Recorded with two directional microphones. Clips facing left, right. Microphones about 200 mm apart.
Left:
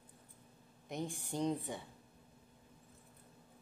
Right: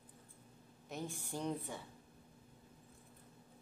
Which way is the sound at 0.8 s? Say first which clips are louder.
Left 3 dB; 15° left (ahead or behind).